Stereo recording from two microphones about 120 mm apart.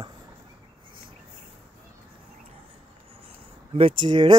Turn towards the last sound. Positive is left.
turn(degrees=-40)  # may be behind; listen again after turning